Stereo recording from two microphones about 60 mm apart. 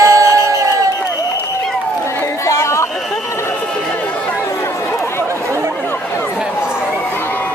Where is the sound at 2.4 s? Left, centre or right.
Left.